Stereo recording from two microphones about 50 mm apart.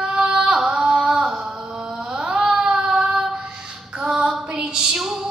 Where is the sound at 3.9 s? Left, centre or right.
Centre.